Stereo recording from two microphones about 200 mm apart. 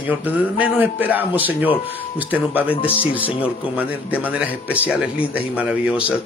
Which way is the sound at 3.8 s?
5° right (ahead or behind).